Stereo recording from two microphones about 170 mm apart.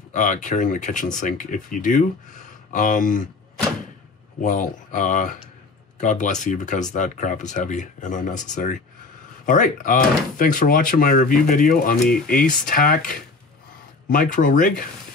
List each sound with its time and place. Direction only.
0.1 s speech: 45° left (ahead or behind)
4.4 s speech: 45° left (ahead or behind)